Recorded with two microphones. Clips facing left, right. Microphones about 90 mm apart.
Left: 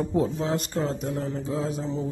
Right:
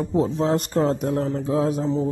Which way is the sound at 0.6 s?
50° right (ahead or behind).